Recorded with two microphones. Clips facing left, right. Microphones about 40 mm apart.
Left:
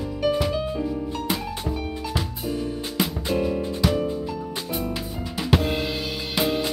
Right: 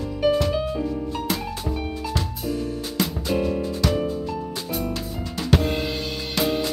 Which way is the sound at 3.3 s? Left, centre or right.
Centre.